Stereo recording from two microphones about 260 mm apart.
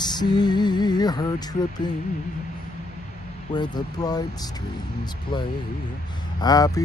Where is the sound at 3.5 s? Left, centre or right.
Centre.